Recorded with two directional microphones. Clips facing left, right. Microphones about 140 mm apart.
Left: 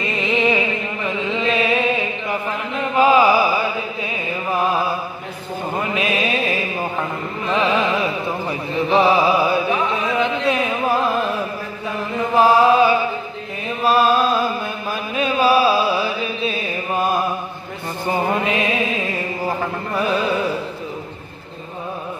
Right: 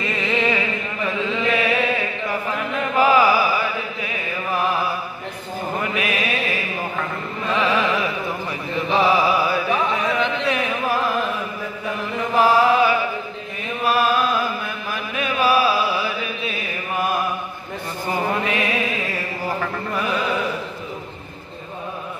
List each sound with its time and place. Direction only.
0.0 s music: 20° left (ahead or behind)
1.4 s a sound: 25° left (ahead or behind)
2.8 s chant: 25° left (ahead or behind)
5.9 s mantra: 25° left (ahead or behind)
7.5 s music: 25° left (ahead or behind)
12.4 s music: 25° left (ahead or behind)
18.3 s mantra: 25° left (ahead or behind)